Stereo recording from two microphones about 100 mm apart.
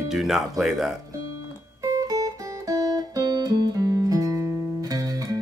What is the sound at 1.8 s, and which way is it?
Music, 35° right (ahead or behind).